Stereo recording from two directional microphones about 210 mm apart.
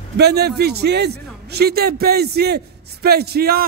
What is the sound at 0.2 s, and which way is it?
A man's voice, 50° right (ahead or behind).